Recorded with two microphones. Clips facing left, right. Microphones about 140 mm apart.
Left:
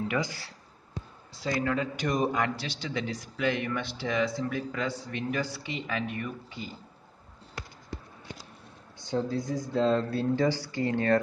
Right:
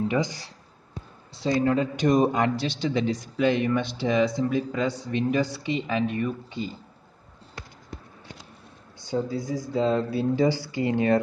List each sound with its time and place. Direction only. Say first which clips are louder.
0.1 s speech: right 5 dB; 20° right (ahead or behind)
9.0 s speech: right 2 dB; 5° right (ahead or behind)